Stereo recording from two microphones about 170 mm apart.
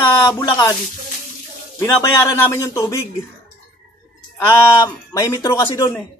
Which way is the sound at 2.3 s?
15° left (ahead or behind).